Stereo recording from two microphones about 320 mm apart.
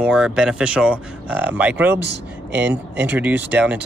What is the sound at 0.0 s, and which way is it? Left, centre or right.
Speech, centre.